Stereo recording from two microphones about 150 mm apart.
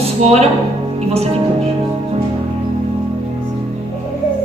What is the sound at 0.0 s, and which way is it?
Music, 45° right (ahead or behind).